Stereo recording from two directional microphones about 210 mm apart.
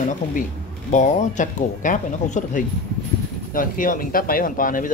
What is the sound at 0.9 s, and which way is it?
Speech, 35° left (ahead or behind).